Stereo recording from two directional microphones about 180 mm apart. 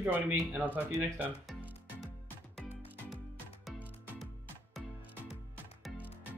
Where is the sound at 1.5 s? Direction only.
Centre (ahead or behind).